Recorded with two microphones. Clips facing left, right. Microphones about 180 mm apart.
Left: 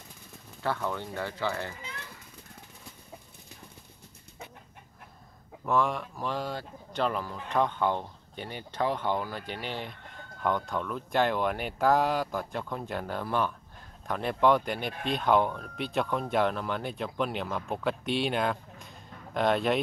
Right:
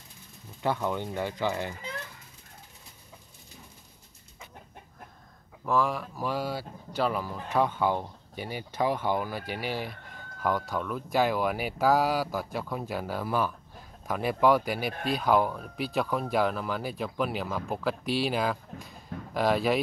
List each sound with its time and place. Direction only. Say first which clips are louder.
0.6 s speech: right 3 dB; 15° right (ahead or behind)
5.7 s speech: even; centre (ahead or behind)